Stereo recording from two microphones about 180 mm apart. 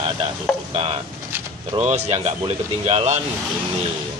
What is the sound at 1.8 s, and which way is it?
Speech, 40° right (ahead or behind).